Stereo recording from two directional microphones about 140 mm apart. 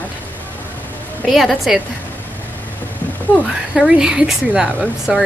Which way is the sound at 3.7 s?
5° right (ahead or behind).